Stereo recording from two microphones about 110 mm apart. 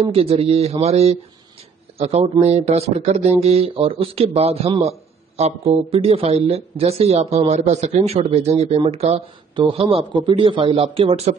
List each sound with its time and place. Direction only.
0.1 s speech: 60° right (ahead or behind)
9.6 s speech: 55° right (ahead or behind)